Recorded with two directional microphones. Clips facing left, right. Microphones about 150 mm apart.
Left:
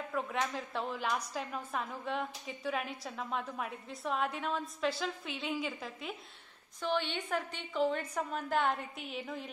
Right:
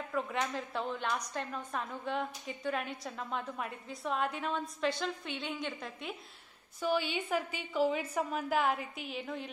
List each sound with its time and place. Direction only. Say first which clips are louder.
0.1 s a woman's voice: right 1 dB; centre (ahead or behind)